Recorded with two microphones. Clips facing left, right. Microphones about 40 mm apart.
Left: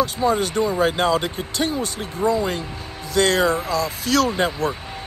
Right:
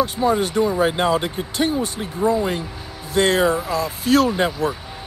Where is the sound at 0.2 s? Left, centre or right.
Right.